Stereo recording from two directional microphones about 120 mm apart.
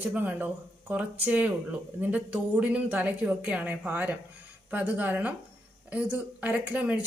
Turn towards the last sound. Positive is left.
turn(degrees=-10)  # may be behind; listen again after turning